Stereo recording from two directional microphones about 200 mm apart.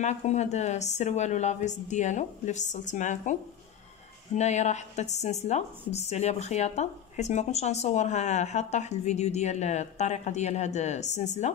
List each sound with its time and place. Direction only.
0.0 s a woman's voice: 35° left (ahead or behind)
4.4 s a woman's voice: 35° left (ahead or behind)